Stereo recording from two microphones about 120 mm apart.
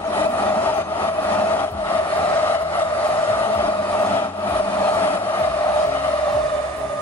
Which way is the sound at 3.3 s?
20° left (ahead or behind).